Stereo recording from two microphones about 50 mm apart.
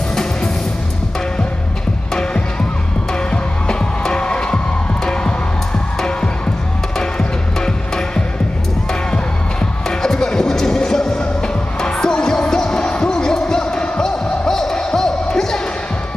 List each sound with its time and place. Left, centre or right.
0.1 s music: centre
3.1 s music: centre
9.8 s music: centre